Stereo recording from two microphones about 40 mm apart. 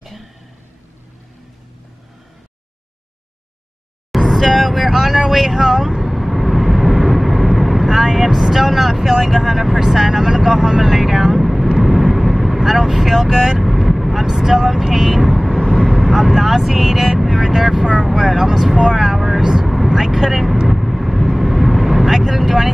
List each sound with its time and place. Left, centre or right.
4.3 s vehicle: centre
10.4 s speech: centre
11.8 s vehicle: centre
15.5 s vehicle: centre
16.0 s speech: centre
18.2 s speech: centre
20.6 s vehicle: centre